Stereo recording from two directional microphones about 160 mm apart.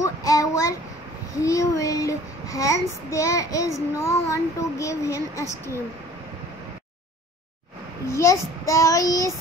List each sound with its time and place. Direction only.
0.0 s child singing: 20° left (ahead or behind)
8.1 s child singing: 20° left (ahead or behind)